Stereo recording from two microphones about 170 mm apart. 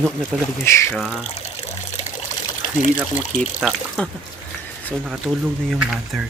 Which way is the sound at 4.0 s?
5° left (ahead or behind).